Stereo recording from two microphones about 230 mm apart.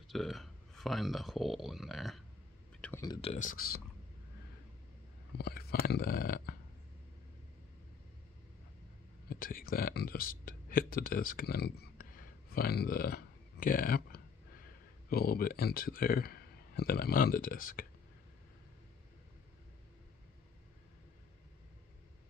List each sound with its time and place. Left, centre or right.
0.1 s speech: centre
2.8 s speech: centre; by 3.8 s left
5.4 s speech: left
9.3 s speech: left